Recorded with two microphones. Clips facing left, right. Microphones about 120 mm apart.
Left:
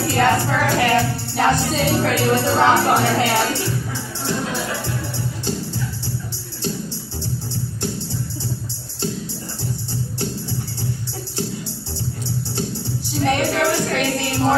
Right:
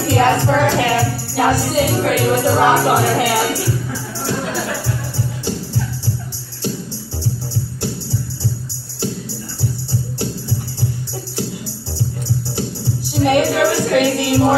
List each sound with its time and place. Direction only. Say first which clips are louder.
0.0 s music: right 3 dB; 20° right (ahead or behind)
0.9 s music: right 1 dB; 10° right (ahead or behind)
4.8 s music: right 2 dB; 10° right (ahead or behind)
7.5 s music: right 2 dB; 15° left (ahead or behind)
13.1 s music: right 5 dB; 15° right (ahead or behind)